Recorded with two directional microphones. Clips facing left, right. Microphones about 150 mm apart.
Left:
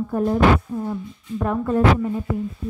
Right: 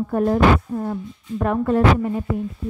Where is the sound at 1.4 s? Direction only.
70° right (ahead or behind).